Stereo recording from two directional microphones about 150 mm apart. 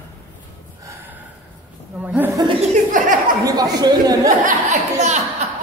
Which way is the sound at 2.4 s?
35° right (ahead or behind).